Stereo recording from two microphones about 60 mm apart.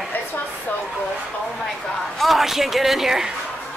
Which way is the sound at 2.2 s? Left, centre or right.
Centre.